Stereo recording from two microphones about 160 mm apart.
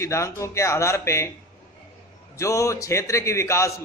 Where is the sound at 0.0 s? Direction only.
20° left (ahead or behind).